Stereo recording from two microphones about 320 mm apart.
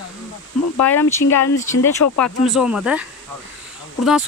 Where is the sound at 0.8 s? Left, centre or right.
Centre.